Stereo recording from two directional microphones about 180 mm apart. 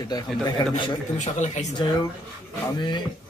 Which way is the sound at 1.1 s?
40° left (ahead or behind).